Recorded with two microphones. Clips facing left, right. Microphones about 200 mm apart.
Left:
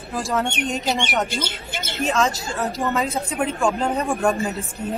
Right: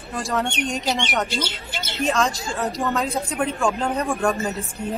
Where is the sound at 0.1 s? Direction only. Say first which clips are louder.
Left 1 dB; centre (ahead or behind).